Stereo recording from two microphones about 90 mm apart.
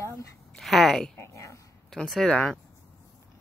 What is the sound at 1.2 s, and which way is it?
Speech, 30° left (ahead or behind).